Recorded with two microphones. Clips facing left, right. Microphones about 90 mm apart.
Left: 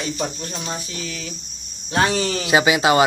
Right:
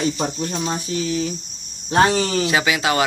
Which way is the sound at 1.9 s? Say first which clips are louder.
Right 3 dB; 30° right (ahead or behind).